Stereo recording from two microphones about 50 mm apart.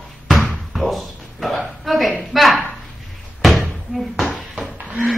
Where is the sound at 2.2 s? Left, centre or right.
Centre.